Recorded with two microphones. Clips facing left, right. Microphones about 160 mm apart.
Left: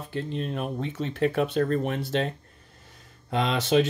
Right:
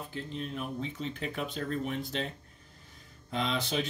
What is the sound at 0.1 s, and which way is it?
Speech, 75° left (ahead or behind).